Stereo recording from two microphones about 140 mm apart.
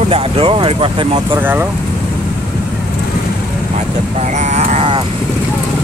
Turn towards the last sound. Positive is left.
turn(degrees=-50)  # may be behind; listen again after turning